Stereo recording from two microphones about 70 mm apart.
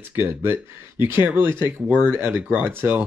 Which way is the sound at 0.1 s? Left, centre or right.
Right.